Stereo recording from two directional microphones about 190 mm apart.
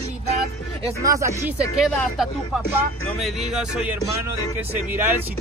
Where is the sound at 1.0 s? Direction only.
15° right (ahead or behind).